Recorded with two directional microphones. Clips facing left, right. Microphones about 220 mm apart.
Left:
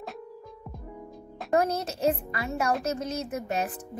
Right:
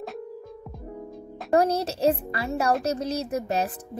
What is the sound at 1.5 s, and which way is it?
Speech, 35° right (ahead or behind).